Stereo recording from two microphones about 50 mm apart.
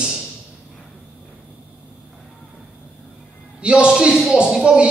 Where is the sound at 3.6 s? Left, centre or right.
Right.